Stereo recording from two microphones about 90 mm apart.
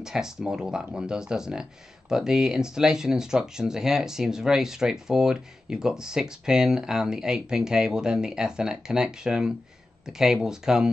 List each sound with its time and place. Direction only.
0.0 s speech: 5° right (ahead or behind)